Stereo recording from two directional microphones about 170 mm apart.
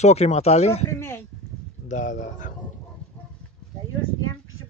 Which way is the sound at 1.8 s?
45° left (ahead or behind).